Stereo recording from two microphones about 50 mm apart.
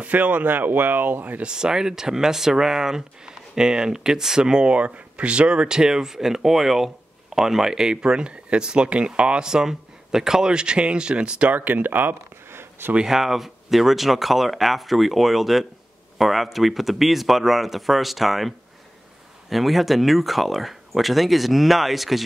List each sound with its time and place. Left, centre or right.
0.0 s speech: right
1.4 s speech: centre; by 12.2 s right
12.4 s a sound: right
13.0 s speech: centre
19.5 s speech: centre